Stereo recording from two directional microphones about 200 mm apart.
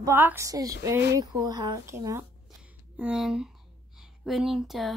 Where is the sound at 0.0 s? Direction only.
10° right (ahead or behind).